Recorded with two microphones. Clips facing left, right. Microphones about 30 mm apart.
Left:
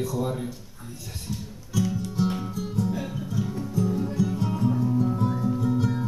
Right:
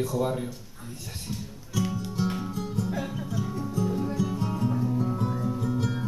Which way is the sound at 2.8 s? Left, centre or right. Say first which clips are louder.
Left 3 dB; centre.